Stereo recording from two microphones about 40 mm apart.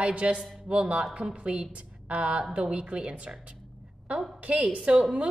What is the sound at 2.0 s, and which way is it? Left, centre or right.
A woman's voice, right.